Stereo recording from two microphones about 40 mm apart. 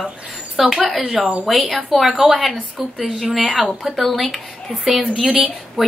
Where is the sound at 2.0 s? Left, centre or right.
Right.